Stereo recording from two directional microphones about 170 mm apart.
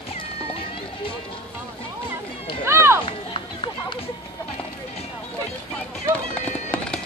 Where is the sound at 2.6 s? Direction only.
15° right (ahead or behind).